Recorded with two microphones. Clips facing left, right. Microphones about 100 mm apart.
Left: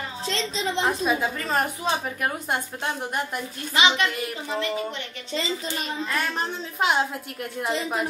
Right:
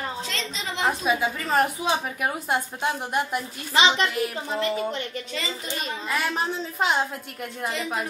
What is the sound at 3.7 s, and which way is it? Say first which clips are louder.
Speech: right 1 dB; 30° right (ahead or behind).